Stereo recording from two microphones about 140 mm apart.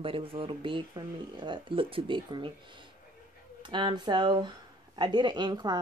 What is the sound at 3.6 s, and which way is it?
Speech, 35° right (ahead or behind).